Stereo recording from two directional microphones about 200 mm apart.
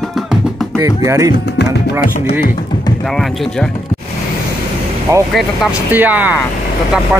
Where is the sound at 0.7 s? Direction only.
15° right (ahead or behind).